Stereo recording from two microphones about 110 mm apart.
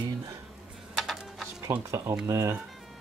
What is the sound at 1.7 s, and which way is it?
Speech, 20° right (ahead or behind).